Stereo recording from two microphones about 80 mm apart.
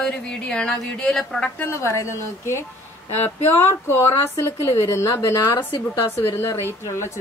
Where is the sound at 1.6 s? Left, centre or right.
Left.